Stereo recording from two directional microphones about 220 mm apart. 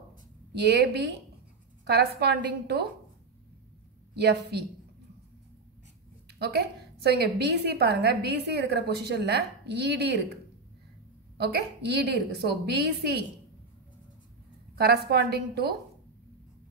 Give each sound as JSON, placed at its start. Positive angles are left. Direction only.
{"t": 0.6, "sound": "a woman's voice", "side_deg": -50}
{"t": 4.1, "sound": "a woman's voice", "side_deg": -50}
{"t": 6.2, "sound": "a woman's voice", "side_deg": -50}
{"t": 14.8, "sound": "a woman's voice", "side_deg": -45}